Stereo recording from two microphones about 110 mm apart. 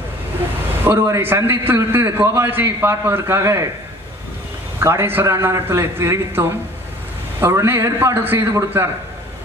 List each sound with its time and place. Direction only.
0.8 s a man's voice: 20° right (ahead or behind)
4.7 s a man's voice: 25° right (ahead or behind)